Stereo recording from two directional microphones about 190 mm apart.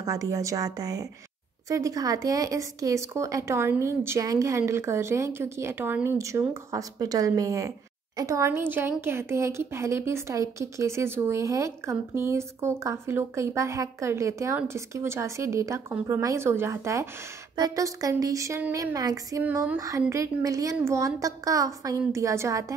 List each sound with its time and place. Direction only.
0.0 s speech: 20° right (ahead or behind)